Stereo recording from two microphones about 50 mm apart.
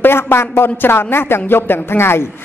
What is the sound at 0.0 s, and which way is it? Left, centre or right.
A woman's voice, left.